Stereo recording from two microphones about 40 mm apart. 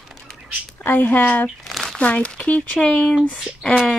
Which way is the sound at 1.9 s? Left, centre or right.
Left.